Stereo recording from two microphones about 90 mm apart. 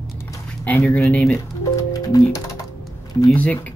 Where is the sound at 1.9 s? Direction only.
40° left (ahead or behind).